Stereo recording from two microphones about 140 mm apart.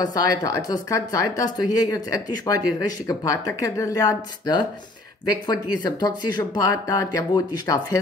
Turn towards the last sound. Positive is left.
turn(degrees=25)  # may be behind; listen again after turning